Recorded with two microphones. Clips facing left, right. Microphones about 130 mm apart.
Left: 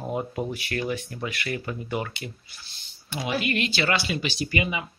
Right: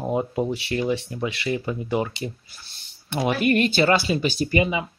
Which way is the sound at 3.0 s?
55° right (ahead or behind).